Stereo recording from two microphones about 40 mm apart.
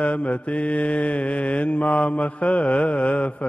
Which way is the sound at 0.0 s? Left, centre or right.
Left.